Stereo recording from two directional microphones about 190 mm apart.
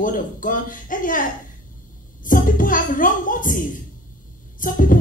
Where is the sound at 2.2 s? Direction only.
45° left (ahead or behind).